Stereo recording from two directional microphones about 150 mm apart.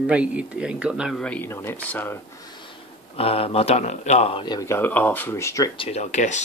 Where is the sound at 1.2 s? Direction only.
10° left (ahead or behind).